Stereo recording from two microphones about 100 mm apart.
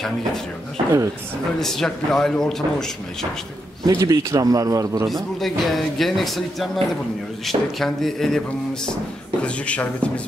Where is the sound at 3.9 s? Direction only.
35° right (ahead or behind).